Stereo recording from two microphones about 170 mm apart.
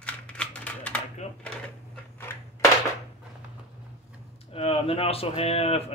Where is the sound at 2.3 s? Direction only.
15° left (ahead or behind).